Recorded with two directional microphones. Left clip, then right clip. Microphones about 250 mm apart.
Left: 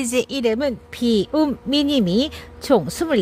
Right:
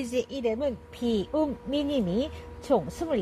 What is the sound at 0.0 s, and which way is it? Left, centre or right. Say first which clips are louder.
A woman's voice: left 8 dB; left.